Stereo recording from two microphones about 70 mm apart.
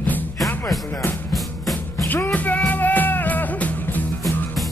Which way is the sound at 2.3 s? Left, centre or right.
Left.